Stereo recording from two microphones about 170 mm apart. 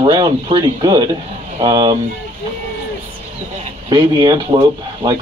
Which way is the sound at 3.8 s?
20° right (ahead or behind).